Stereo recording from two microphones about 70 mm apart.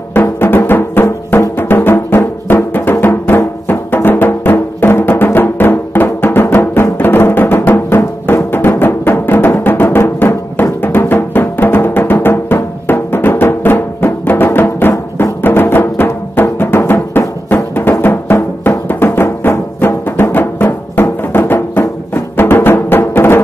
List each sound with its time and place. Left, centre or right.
0.1 s music: left